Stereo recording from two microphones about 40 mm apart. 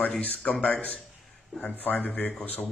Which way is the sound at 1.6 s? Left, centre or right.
Left.